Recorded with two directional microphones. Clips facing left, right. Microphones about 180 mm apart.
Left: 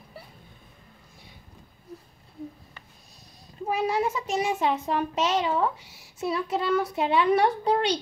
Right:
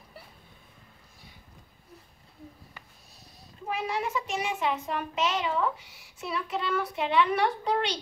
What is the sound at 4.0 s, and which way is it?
A child's voice, 40° left (ahead or behind).